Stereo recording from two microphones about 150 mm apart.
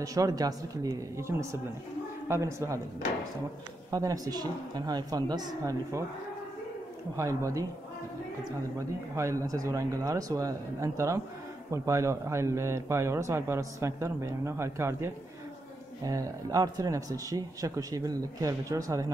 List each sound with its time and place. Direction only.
0.0 s a man's voice: 25° right (ahead or behind)
3.9 s a man's voice: 20° right (ahead or behind)
7.2 s a man's voice: 20° right (ahead or behind)
8.7 s a man's voice: 20° right (ahead or behind)